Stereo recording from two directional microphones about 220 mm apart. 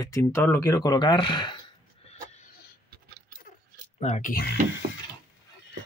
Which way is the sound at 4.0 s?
35° left (ahead or behind).